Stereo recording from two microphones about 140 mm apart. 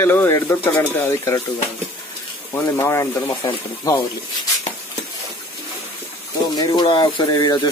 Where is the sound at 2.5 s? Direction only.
20° left (ahead or behind).